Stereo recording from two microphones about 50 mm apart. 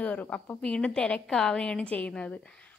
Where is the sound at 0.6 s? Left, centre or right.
Centre.